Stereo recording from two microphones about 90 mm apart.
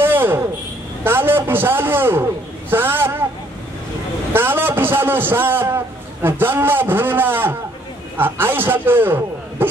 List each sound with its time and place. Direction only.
0.0 s a sound: 25° right (ahead or behind)
1.0 s a man's voice: 25° right (ahead or behind)
4.3 s a man's voice: 25° right (ahead or behind)